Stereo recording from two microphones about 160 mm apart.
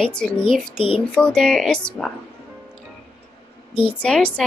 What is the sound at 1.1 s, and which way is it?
Speech, 5° left (ahead or behind).